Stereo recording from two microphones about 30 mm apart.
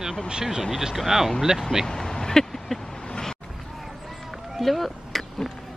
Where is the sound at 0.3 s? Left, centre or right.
Right.